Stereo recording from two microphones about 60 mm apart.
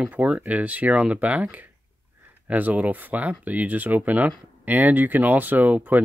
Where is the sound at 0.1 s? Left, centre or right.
Right.